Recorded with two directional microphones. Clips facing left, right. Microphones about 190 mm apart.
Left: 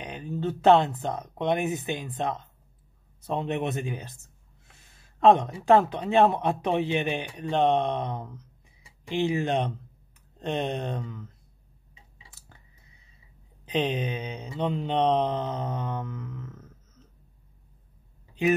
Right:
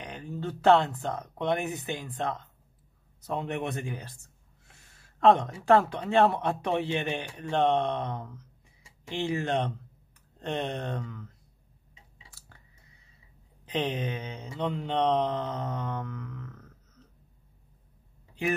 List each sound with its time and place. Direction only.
0.0 s speech: 15° left (ahead or behind)
5.2 s speech: 15° left (ahead or behind)
12.3 s a sound: 20° left (ahead or behind)
13.7 s speech: 15° left (ahead or behind)